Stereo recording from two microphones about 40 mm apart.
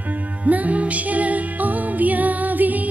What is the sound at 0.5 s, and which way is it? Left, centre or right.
Music, right.